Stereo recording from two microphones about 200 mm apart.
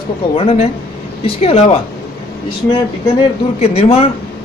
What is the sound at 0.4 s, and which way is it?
A man's voice, 30° left (ahead or behind).